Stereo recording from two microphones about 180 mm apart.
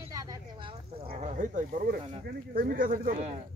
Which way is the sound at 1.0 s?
50° right (ahead or behind).